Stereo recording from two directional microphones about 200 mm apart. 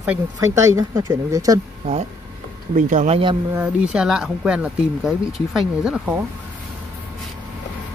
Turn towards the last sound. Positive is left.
turn(degrees=-5)  # may be behind; listen again after turning